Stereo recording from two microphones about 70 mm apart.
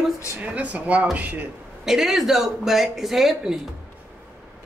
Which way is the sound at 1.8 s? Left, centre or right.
Centre.